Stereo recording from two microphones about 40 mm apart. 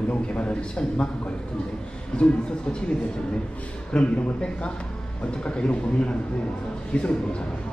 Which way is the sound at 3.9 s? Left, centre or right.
Left.